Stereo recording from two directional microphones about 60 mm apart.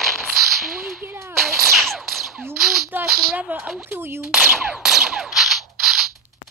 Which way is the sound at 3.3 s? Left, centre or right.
Right.